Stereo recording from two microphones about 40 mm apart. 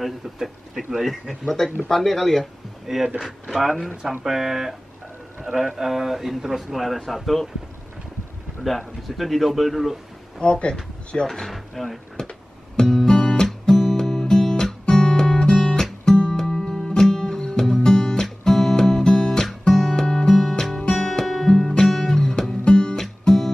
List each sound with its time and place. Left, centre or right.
0.0 s speech: centre
2.9 s speech: centre
3.4 s speech: centre
5.8 s speech: centre
8.6 s speech: centre
10.4 s speech: left
11.3 s speech: centre
12.7 s music: centre
20.8 s music: left
21.1 s music: centre
22.7 s music: left
23.2 s music: centre